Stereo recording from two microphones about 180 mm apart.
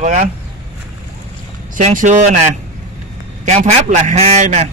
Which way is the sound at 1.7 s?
45° right (ahead or behind).